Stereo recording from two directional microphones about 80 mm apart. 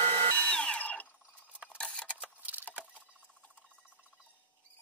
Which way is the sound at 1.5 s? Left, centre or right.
Centre.